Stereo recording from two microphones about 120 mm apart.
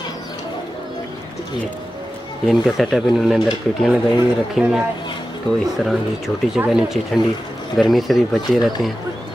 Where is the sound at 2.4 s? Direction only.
Centre (ahead or behind).